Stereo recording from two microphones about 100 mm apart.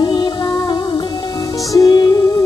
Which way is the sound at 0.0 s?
50° left (ahead or behind).